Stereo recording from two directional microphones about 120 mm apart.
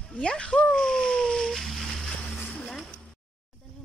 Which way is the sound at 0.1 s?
10° left (ahead or behind).